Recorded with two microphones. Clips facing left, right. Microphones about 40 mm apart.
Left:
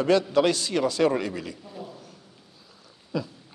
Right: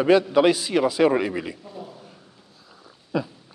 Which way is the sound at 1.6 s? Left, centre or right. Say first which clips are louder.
Right 1 dB; centre.